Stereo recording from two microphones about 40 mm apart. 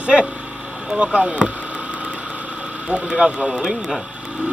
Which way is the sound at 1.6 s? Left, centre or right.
Right.